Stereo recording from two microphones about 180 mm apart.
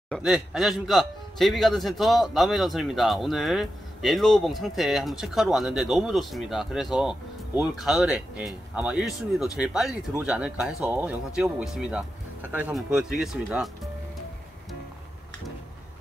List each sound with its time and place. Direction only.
0.1 s a man's voice: 5° right (ahead or behind)